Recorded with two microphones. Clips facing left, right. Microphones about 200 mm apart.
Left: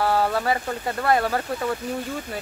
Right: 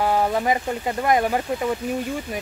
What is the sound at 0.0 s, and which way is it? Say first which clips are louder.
Speech: right 1 dB; 15° right (ahead or behind).